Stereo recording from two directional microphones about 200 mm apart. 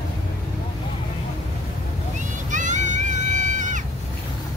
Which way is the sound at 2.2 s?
40° right (ahead or behind).